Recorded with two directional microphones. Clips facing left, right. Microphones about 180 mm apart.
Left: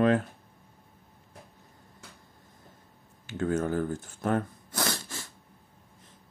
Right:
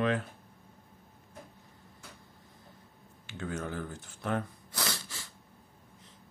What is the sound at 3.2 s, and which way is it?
Speech, 45° left (ahead or behind).